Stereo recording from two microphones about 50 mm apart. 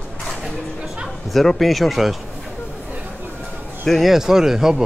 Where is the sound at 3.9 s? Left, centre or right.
Centre.